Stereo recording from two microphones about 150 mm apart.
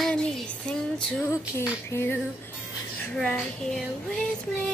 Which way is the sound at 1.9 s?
15° left (ahead or behind).